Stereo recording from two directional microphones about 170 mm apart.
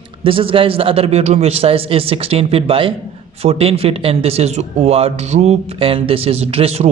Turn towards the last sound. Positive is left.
turn(degrees=-35)  # may be behind; listen again after turning